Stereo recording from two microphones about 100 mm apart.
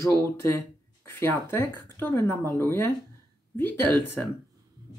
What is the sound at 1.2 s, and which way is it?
Speech, 25° left (ahead or behind).